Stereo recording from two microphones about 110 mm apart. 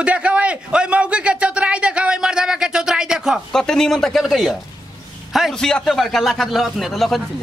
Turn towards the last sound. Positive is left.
turn(degrees=0)  # may be behind; listen again after turning